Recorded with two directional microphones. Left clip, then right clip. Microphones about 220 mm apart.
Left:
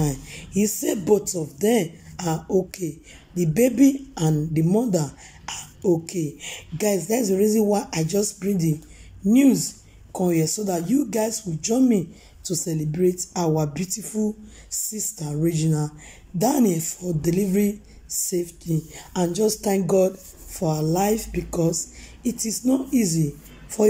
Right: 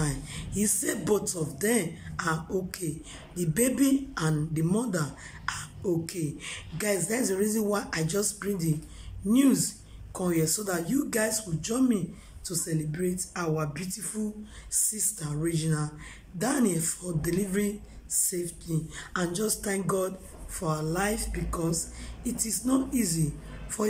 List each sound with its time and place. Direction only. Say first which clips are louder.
0.0 s speech: left 6 dB; 15° left (ahead or behind)